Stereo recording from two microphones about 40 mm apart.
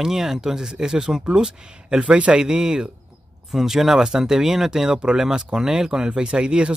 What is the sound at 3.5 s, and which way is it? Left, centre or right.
Speech, centre.